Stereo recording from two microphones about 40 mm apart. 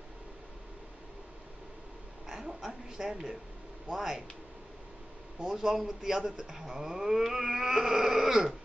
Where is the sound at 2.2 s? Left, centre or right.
Centre.